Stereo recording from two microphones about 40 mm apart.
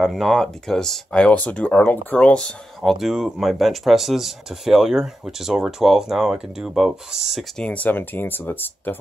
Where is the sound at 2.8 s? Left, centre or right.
Centre.